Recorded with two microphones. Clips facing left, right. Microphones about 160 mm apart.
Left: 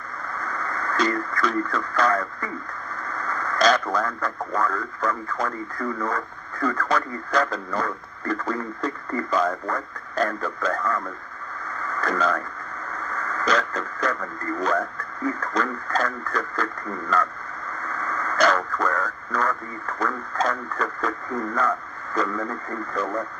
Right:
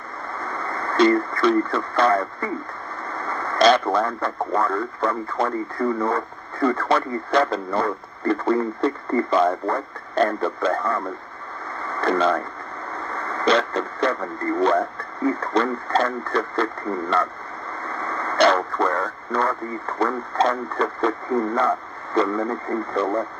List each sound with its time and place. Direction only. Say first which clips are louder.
0.4 s speech: right 2 dB; 30° right (ahead or behind)
11.8 s radio: right 4 dB; 30° right (ahead or behind)
12.9 s speech: right 2 dB; 30° right (ahead or behind)